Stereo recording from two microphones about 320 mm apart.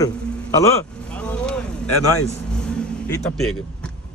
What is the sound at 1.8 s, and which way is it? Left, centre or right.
Speech, left.